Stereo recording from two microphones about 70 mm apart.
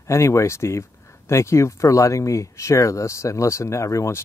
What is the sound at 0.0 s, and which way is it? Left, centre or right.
Speech, left.